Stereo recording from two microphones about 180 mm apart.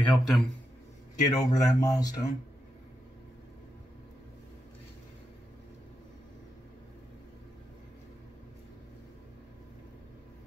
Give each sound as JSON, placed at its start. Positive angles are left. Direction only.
{"t": 0.0, "sound": "a man's voice", "side_deg": 5}
{"t": 1.2, "sound": "speech", "side_deg": 20}